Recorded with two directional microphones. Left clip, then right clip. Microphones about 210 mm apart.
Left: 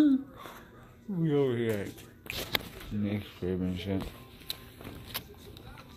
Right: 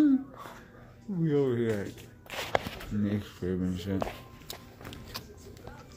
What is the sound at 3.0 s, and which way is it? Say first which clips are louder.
Speech: right 1 dB; 15° right (ahead or behind).